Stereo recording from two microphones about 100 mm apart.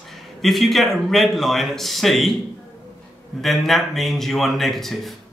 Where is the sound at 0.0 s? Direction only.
Centre (ahead or behind).